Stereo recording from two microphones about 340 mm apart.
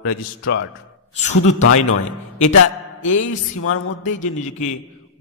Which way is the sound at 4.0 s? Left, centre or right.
Left.